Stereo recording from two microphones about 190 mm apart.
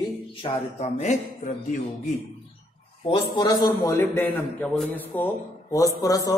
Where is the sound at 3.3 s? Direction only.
20° left (ahead or behind).